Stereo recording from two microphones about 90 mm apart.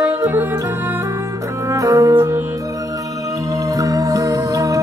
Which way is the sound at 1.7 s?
40° right (ahead or behind).